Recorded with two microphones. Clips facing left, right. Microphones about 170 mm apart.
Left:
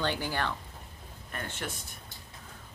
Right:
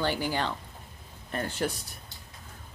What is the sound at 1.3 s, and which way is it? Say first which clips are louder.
Speech: right 8 dB; 35° right (ahead or behind).